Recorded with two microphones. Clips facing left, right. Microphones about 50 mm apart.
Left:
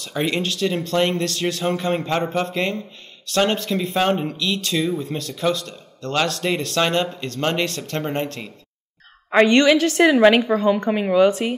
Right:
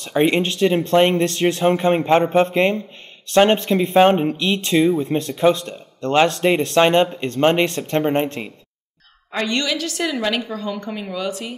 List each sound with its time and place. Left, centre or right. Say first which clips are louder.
0.0 s speech: right 6 dB; right
9.3 s a woman's voice: left 8 dB; left